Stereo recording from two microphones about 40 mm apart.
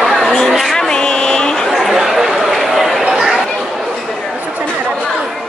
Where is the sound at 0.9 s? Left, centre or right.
Centre.